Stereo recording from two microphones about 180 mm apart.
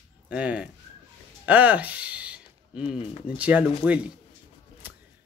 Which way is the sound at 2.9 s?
30° left (ahead or behind).